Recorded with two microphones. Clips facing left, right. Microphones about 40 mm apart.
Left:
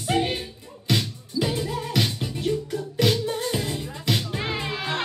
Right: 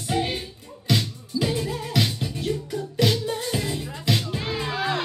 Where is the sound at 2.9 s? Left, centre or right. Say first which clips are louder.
Even; left.